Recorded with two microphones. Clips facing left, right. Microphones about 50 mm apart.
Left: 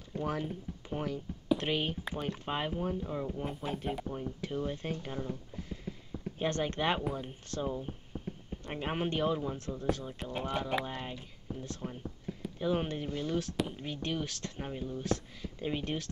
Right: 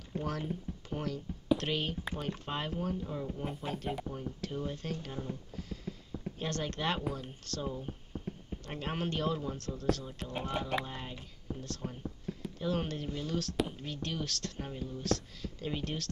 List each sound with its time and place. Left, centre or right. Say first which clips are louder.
0.2 s speech: left 3 dB; centre
3.3 s speech: left 1 dB; centre
5.6 s a sound: even; centre
6.4 s speech: left 4 dB; left
7.0 s speech: left 2 dB; centre
8.1 s a sound: even; centre
8.6 s speech: left 2 dB; centre
10.3 s speech: left 1 dB; centre
10.9 s speech: left 3 dB; centre
11.5 s a sound: even; centre
12.5 s speech: left 3 dB; centre